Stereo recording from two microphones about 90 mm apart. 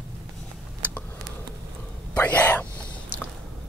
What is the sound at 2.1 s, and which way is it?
Speech, 15° left (ahead or behind).